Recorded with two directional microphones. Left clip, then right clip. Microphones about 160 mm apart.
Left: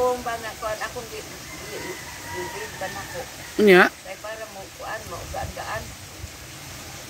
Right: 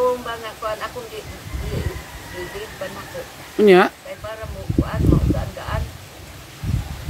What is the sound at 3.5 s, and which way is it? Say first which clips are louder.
Speech: right 2 dB; 10° right (ahead or behind).